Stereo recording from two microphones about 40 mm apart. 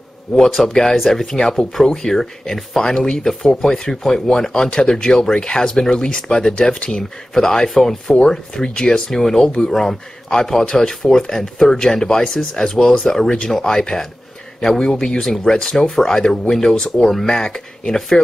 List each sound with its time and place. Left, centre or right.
0.5 s speech: centre
7.6 s speech: centre
8.2 s speech: centre
17.0 s speech: centre
17.3 s speech: centre